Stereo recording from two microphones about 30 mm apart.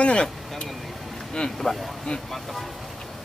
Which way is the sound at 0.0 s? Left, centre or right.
Left.